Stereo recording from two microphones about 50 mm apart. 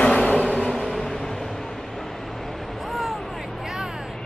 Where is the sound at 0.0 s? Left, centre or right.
Left.